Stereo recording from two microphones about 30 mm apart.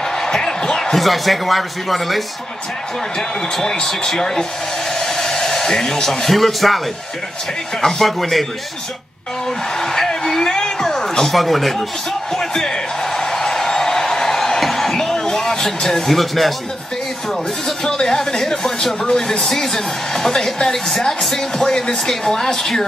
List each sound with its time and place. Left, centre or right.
0.2 s a sound: centre
0.9 s a man's voice: centre
3.6 s a woman's voice: centre
4.9 s hair dryer: centre
6.0 s a man's voice: centre
7.8 s a woman's voice: centre
9.8 s a sound: centre
10.4 s music: left
11.3 s a man's voice: centre
12.4 s speech: left
13.1 s a sound: centre
16.1 s a man's voice: centre
17.8 s speech: left
18.6 s a woman's voice: centre